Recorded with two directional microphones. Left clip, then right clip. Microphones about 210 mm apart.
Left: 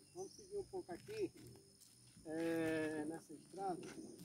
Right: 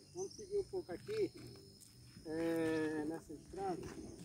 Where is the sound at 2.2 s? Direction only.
40° left (ahead or behind).